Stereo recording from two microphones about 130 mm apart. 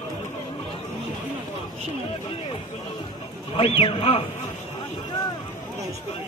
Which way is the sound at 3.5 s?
45° left (ahead or behind).